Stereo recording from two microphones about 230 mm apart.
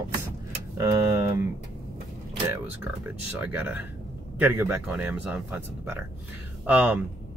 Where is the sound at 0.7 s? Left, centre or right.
Centre.